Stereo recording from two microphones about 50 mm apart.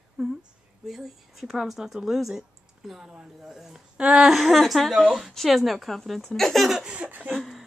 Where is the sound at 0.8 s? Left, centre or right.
Centre.